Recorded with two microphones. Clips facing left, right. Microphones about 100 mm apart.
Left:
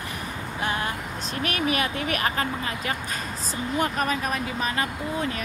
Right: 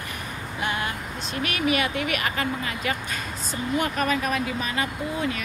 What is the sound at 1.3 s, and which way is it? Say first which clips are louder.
Speech: right 1 dB; 40° left (ahead or behind).